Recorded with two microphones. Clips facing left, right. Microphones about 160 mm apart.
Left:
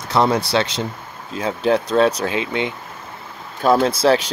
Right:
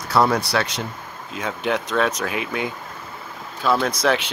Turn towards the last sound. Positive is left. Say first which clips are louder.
# left 5 dB
turn(degrees=30)  # may be behind; listen again after turning